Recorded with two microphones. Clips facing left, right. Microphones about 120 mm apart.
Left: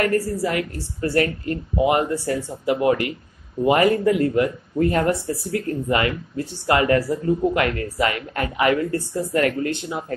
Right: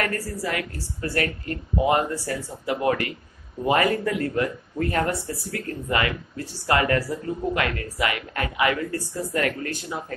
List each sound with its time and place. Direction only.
0.0 s a woman's voice: 25° left (ahead or behind)